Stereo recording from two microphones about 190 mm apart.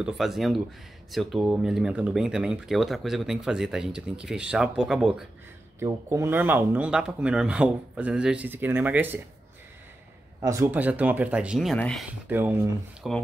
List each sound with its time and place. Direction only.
0.0 s speech: centre (ahead or behind)
5.8 s speech: 15° right (ahead or behind)
10.4 s speech: 15° right (ahead or behind); by 12.0 s 5° left (ahead or behind)
12.1 s speech: 10° right (ahead or behind)